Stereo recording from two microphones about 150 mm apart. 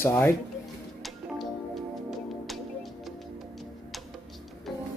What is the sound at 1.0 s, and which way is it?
Music, centre (ahead or behind).